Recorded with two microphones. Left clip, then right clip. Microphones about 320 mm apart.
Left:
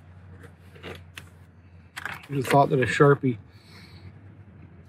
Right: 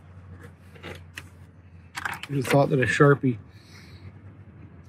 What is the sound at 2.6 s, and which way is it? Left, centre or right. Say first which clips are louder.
Speech: left 1 dB; centre.